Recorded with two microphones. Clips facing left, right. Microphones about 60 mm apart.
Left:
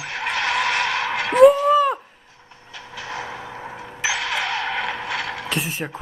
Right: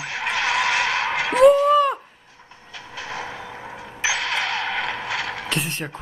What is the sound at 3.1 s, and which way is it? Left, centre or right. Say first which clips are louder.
Vehicle: left 1 dB; left.